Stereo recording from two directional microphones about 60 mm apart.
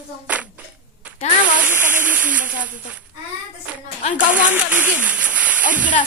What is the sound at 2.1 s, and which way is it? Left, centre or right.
Speech, right.